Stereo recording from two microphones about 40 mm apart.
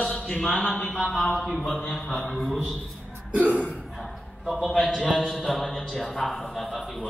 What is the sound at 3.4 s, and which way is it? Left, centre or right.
Speech, right.